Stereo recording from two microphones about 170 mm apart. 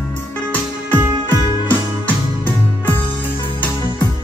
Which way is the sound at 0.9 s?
15° right (ahead or behind).